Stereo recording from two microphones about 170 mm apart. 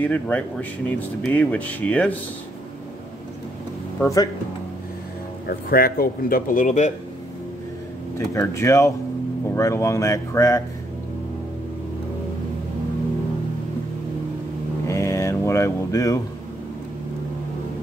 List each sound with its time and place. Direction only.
0.0 s speech: 10° left (ahead or behind)
4.0 s speech: 20° left (ahead or behind)
5.5 s a man's voice: 60° left (ahead or behind)
8.2 s speech: 15° left (ahead or behind)
14.9 s a sound: 20° left (ahead or behind)